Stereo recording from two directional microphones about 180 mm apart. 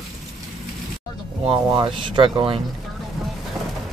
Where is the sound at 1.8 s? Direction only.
25° right (ahead or behind).